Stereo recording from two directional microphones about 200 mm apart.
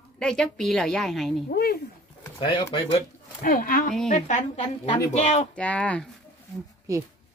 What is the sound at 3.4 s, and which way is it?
A woman's voice, 45° left (ahead or behind).